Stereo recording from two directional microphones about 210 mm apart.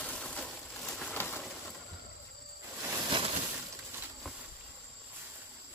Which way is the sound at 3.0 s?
25° right (ahead or behind).